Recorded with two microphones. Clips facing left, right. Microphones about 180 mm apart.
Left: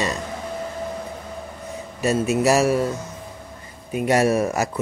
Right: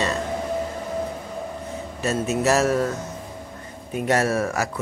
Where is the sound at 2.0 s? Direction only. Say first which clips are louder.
Left 3 dB; 10° left (ahead or behind).